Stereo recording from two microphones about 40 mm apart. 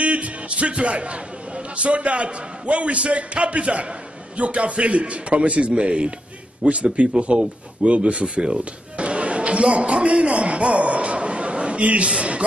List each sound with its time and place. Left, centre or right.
0.0 s a man's voice: right